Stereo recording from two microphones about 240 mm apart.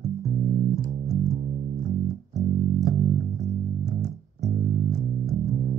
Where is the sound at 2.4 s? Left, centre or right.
Right.